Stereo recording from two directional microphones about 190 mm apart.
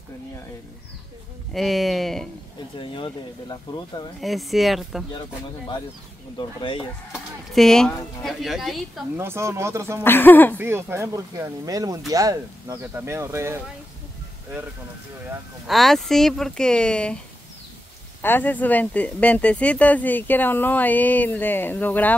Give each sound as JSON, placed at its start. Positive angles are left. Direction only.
{"t": 1.5, "sound": "speech", "side_deg": 0}
{"t": 2.8, "sound": "speech", "side_deg": 25}
{"t": 4.2, "sound": "speech", "side_deg": 0}
{"t": 6.3, "sound": "speech", "side_deg": 30}
{"t": 7.1, "sound": "speech", "side_deg": 0}
{"t": 9.1, "sound": "speech", "side_deg": -10}
{"t": 10.0, "sound": "speech", "side_deg": 10}
{"t": 10.6, "sound": "speech", "side_deg": -10}
{"t": 15.6, "sound": "speech", "side_deg": 0}
{"t": 18.2, "sound": "speech", "side_deg": 10}